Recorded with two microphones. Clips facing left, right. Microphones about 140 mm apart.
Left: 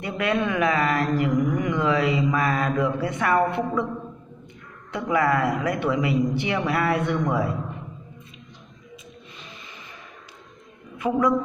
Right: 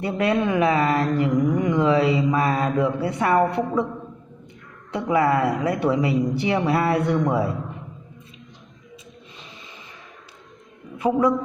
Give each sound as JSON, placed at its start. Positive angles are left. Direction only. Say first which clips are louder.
{"t": 0.0, "sound": "speech", "louder": "right 3 dB", "side_deg": -30}
{"t": 4.9, "sound": "speech", "louder": "right 2 dB", "side_deg": -25}
{"t": 11.0, "sound": "a man's voice", "louder": "right 2 dB", "side_deg": -30}